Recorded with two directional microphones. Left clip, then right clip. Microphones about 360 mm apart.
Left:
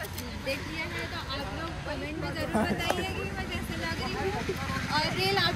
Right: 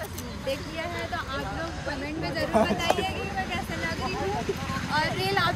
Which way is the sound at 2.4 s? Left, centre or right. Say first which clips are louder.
Right 6 dB; right.